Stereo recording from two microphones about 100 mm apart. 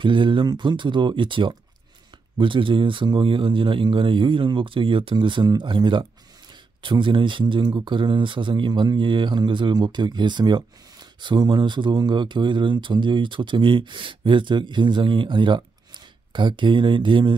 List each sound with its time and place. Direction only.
0.0 s speech: 55° right (ahead or behind)